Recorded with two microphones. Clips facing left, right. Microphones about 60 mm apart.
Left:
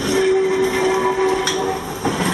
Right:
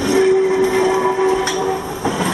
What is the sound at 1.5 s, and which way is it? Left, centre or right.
Train, centre.